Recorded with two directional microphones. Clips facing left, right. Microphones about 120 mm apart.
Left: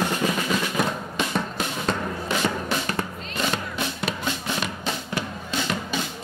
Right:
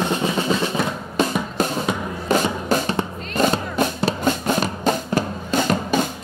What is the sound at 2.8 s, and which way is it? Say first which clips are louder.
Music: right 5 dB; 25° right (ahead or behind).